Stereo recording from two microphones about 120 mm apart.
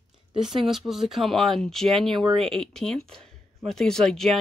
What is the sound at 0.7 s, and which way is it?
Speech, centre (ahead or behind).